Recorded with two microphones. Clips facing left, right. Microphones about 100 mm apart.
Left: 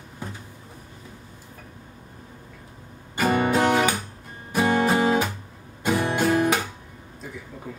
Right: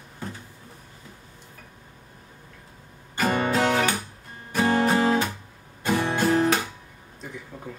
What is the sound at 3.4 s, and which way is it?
Music, 15° left (ahead or behind).